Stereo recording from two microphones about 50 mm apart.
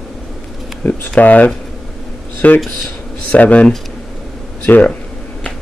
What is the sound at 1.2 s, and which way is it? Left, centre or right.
Speech, left.